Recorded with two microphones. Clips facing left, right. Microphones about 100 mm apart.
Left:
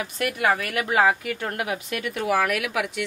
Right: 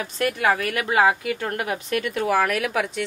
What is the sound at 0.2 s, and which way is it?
Speech, 30° right (ahead or behind).